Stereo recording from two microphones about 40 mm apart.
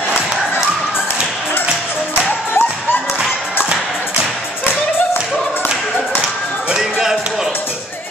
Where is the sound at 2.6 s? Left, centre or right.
Left.